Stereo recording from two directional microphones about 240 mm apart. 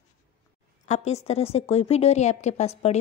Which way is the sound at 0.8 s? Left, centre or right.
Left.